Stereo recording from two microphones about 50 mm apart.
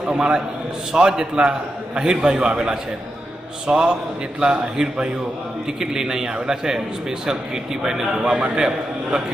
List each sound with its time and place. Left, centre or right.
0.1 s a man's voice: centre